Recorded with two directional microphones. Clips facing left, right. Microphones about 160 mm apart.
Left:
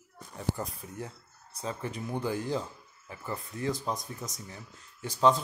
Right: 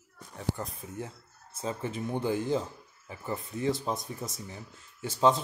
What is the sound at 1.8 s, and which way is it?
Speech, 25° right (ahead or behind).